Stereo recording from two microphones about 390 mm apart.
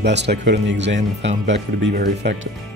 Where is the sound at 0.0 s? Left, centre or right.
Right.